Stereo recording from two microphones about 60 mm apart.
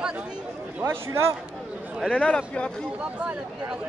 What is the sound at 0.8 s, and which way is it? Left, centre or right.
Speech, right.